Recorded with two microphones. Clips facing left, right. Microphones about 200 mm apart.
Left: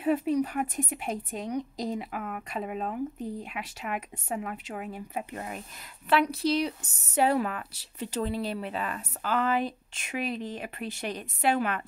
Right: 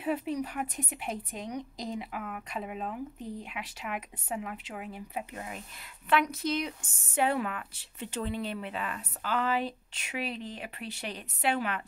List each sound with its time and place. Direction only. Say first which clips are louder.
0.0 s a woman's voice: left 6 dB; 45° left (ahead or behind)
6.0 s a woman's voice: left 3 dB; 35° left (ahead or behind)